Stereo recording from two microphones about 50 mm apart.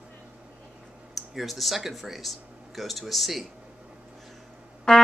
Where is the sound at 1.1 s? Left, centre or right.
Centre.